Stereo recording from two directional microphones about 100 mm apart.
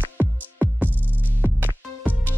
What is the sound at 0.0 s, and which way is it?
Music, 20° right (ahead or behind).